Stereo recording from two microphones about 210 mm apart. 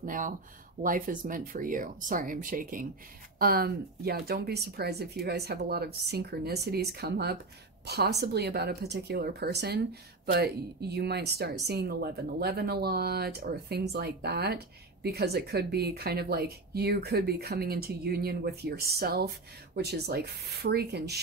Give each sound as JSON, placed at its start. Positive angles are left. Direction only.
{"t": 0.0, "sound": "speech", "side_deg": -40}